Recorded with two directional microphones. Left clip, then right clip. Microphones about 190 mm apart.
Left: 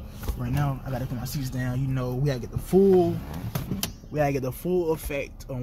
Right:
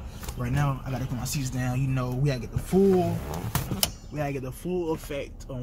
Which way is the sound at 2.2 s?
25° left (ahead or behind).